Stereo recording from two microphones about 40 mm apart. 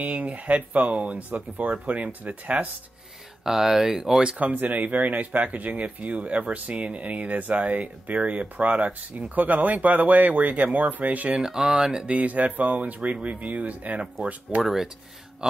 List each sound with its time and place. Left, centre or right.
0.0 s speech: right
3.4 s speech: centre
4.4 s speech: right
11.4 s speech: centre
12.1 s speech: right
14.6 s speech: centre